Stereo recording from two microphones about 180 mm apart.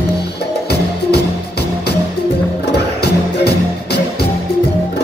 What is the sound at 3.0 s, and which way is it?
Music, 65° left (ahead or behind).